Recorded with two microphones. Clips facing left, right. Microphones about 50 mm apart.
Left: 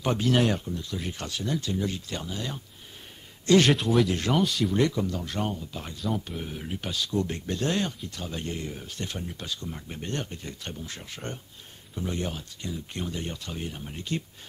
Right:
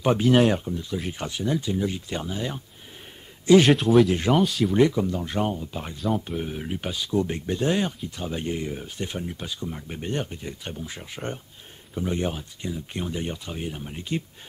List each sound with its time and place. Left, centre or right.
0.0 s speech: centre
3.7 s speech: centre
4.7 s speech: centre